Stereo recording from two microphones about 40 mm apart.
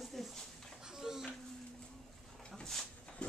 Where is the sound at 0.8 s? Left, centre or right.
Centre.